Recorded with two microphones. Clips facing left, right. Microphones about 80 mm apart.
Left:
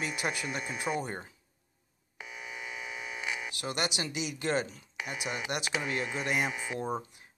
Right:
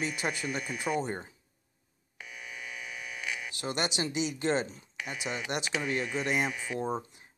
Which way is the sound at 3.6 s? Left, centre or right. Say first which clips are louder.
Right 3 dB; right.